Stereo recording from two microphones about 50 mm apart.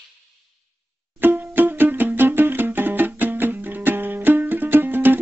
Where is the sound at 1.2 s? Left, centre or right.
Right.